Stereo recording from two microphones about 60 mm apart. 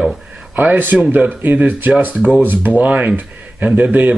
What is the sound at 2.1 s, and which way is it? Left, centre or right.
Speech, centre.